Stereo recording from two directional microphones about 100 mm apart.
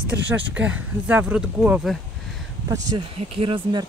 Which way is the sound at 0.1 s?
15° right (ahead or behind).